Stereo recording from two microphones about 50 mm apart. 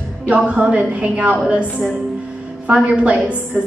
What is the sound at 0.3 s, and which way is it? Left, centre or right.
A woman's voice, right.